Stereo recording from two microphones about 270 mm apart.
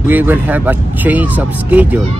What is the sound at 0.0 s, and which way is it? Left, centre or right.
Speech, centre.